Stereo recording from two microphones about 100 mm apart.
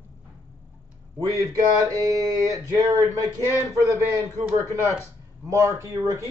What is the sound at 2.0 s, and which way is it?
A man's voice, 40° right (ahead or behind).